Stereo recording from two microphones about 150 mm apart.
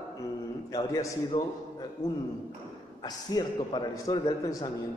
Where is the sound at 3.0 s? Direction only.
30° left (ahead or behind).